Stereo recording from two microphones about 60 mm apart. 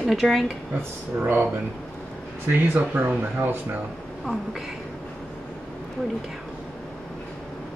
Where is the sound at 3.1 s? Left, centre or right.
Right.